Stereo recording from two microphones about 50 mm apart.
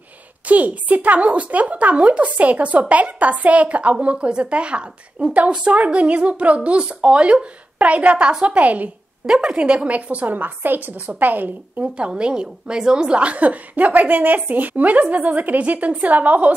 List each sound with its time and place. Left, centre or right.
0.5 s a woman's voice: right
9.2 s a woman's voice: centre; by 11.9 s right
12.1 s a woman's voice: centre